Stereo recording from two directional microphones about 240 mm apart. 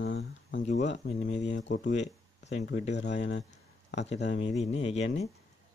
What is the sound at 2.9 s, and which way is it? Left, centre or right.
Speech, left.